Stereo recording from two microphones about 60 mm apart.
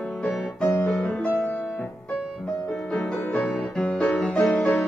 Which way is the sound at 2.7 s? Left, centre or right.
Centre.